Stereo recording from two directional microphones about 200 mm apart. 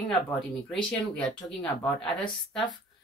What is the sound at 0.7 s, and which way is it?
Speech, 5° left (ahead or behind).